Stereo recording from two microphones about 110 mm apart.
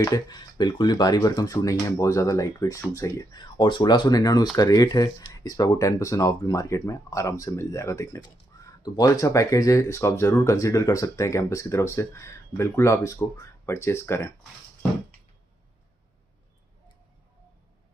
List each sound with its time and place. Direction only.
0.0 s speech: 35° left (ahead or behind)